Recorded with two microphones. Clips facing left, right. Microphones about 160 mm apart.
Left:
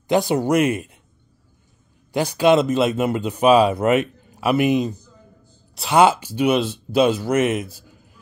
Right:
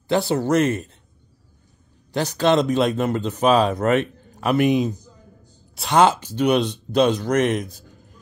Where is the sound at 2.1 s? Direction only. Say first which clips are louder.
Left 3 dB; 10° left (ahead or behind).